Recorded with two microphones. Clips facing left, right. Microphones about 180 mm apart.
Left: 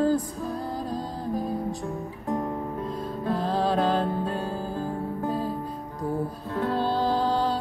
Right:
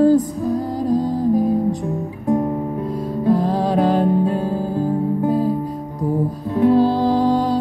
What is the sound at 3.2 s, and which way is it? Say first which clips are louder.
Music: right 8 dB; 15° right (ahead or behind).